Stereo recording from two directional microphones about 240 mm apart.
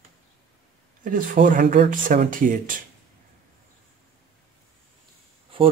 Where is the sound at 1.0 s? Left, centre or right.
Right.